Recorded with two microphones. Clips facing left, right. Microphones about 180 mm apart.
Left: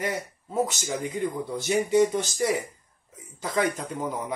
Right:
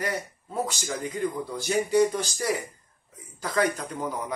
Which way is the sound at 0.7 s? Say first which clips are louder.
Left 1 dB; 20° left (ahead or behind).